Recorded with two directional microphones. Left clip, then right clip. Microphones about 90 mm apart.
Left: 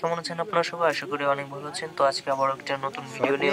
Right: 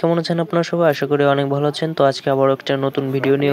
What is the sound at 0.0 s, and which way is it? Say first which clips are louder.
Speech: right 9 dB; 35° right (ahead or behind).